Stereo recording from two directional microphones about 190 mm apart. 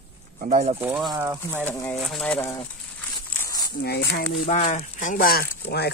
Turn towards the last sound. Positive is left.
turn(degrees=60)  # may be behind; listen again after turning